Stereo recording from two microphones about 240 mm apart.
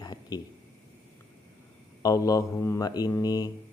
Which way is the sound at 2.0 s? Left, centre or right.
Centre.